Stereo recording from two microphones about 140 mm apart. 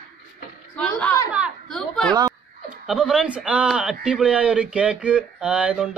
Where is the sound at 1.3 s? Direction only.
5° right (ahead or behind).